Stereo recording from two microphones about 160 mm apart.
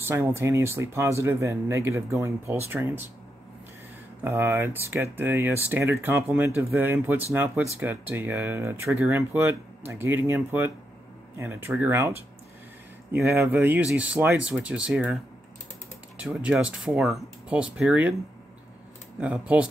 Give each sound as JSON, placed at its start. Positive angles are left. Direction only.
{"t": 0.0, "sound": "speech", "side_deg": -15}
{"t": 4.2, "sound": "speech", "side_deg": -15}
{"t": 16.2, "sound": "speech", "side_deg": -10}
{"t": 19.1, "sound": "speech", "side_deg": -5}